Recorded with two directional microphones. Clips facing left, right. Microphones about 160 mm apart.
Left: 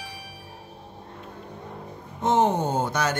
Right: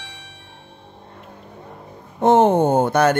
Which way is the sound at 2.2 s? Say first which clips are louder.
Right 8 dB; 55° right (ahead or behind).